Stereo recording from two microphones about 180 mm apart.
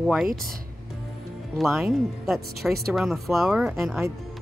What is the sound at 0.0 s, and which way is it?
Speech, centre (ahead or behind).